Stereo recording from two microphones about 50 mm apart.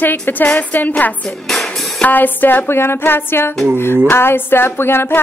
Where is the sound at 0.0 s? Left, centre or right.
Left.